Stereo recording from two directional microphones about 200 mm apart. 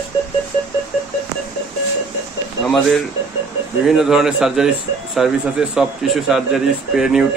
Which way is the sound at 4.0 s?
Centre (ahead or behind).